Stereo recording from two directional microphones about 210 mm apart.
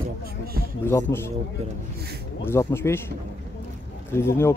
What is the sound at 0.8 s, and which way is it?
Speech, 10° left (ahead or behind).